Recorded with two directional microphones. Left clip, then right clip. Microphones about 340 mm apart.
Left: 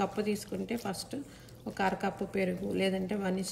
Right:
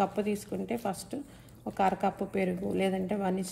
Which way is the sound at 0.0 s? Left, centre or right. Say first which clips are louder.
Right 3 dB; centre.